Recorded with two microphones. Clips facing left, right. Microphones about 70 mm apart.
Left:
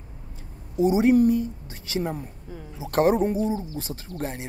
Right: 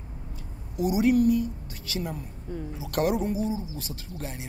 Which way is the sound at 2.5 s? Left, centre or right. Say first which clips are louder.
Right 7 dB; centre.